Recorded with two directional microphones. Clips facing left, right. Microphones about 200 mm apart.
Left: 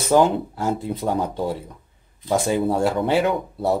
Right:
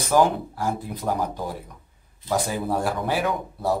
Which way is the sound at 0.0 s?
25° left (ahead or behind).